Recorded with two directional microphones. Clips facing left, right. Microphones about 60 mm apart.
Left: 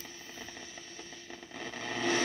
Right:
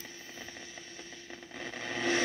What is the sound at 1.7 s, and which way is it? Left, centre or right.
Vehicle, centre.